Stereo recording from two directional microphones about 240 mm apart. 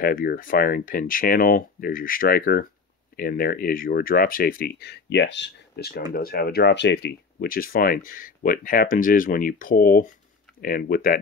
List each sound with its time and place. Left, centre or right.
0.0 s speech: left